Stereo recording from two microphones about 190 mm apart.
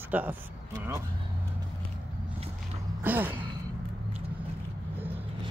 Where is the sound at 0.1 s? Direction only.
10° right (ahead or behind).